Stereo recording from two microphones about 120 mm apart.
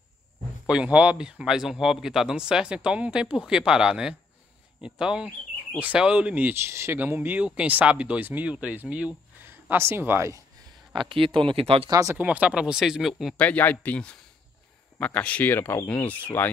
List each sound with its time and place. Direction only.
0.7 s speech: 10° right (ahead or behind)
11.0 s speech: 45° right (ahead or behind)
11.9 s speech: 30° right (ahead or behind)
12.2 s speech: 10° right (ahead or behind)
13.4 s speech: 15° left (ahead or behind)